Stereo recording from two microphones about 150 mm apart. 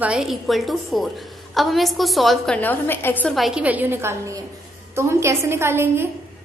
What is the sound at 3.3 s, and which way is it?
A woman's voice, 5° right (ahead or behind).